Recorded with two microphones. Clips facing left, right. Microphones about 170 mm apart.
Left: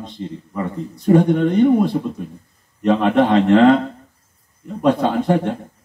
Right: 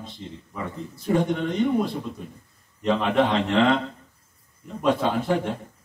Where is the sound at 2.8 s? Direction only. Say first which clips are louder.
Left 6 dB; 50° left (ahead or behind).